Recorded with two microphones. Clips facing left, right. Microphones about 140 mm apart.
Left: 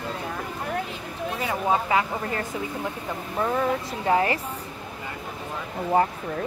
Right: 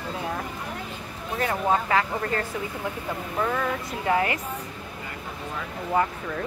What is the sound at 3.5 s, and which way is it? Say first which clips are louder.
Speech: left 3 dB; 30° left (ahead or behind).